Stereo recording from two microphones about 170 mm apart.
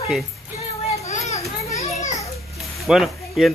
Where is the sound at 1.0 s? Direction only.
40° left (ahead or behind).